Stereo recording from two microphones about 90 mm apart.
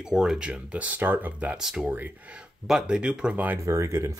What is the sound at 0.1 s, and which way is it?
Speech, 5° right (ahead or behind).